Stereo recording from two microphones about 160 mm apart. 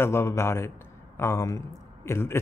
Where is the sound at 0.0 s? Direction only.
15° left (ahead or behind).